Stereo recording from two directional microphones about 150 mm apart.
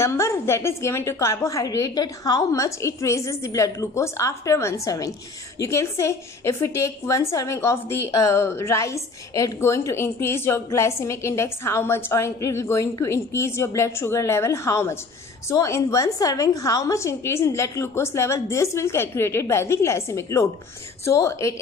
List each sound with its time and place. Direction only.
0.0 s a woman's voice: 20° left (ahead or behind)